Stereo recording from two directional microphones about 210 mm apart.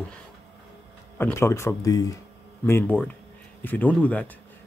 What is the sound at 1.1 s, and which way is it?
Speech, 10° left (ahead or behind).